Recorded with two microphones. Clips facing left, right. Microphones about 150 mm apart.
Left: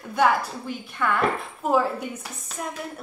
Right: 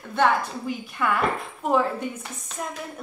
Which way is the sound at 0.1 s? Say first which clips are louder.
Even; 10° left (ahead or behind).